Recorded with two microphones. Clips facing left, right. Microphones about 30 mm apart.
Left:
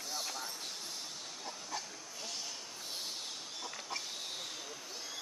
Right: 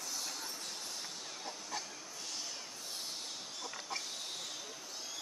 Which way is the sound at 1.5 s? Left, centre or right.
Centre.